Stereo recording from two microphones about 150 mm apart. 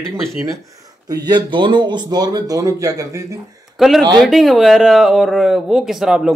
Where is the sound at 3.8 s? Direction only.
Centre (ahead or behind).